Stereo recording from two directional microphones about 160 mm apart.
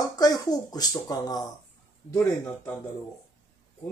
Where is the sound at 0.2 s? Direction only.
25° left (ahead or behind).